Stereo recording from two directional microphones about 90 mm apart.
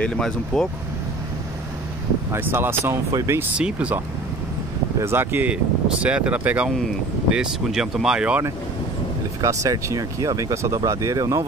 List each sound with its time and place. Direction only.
0.0 s speech: 5° left (ahead or behind)
2.3 s speech: 25° right (ahead or behind)
3.1 s speech: 40° right (ahead or behind)
3.5 s speech: 15° right (ahead or behind)
5.0 s speech: 25° right (ahead or behind); by 8.4 s 10° right (ahead or behind)
9.4 s speech: 35° right (ahead or behind)